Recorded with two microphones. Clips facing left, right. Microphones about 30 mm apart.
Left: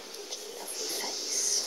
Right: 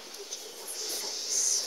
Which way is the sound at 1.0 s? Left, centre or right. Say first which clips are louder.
Right 3 dB; left.